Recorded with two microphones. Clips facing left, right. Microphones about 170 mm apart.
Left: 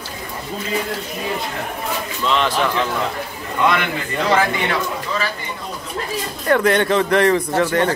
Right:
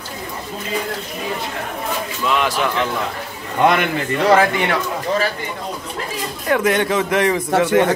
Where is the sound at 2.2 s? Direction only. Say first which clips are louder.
Even; 10° right (ahead or behind).